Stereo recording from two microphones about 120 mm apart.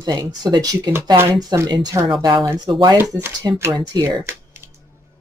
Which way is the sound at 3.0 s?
20° right (ahead or behind).